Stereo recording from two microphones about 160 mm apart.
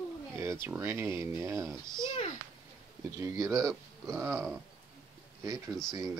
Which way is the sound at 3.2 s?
20° right (ahead or behind).